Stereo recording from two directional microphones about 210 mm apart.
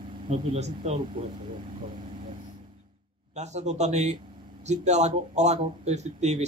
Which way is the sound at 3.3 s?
30° right (ahead or behind).